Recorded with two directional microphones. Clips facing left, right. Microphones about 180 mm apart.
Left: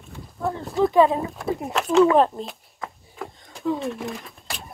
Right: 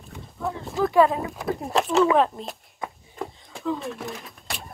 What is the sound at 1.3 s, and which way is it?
Speech, centre (ahead or behind).